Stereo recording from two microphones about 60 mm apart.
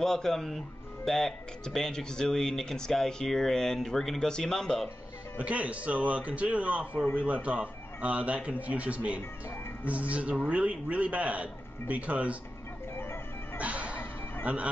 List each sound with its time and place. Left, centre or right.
0.0 s speech: centre
5.4 s speech: right
13.6 s music: right
14.4 s speech: right